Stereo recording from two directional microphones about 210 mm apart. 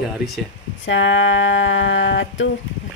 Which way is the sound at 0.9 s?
60° left (ahead or behind).